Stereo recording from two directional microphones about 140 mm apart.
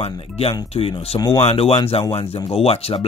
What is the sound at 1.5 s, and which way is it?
Speech, 50° left (ahead or behind).